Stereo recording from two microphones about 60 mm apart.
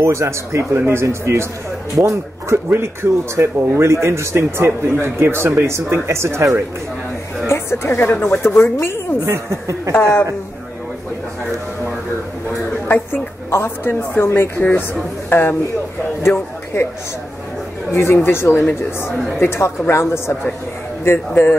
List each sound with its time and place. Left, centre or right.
0.0 s speech: right
0.7 s speech: right
1.0 s speech: right
7.4 s a woman's voice: left
9.2 s speech: right
9.9 s a woman's voice: left
12.8 s a woman's voice: left
14.6 s a man's voice: left
17.9 s speech: left
19.1 s speech: centre
19.4 s speech: left